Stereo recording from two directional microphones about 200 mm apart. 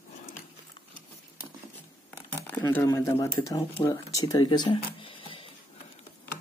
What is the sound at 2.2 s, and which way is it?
Speech, 10° left (ahead or behind).